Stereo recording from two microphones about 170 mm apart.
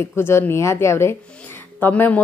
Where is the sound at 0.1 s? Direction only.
15° left (ahead or behind).